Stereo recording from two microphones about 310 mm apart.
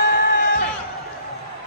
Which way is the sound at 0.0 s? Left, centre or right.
Left.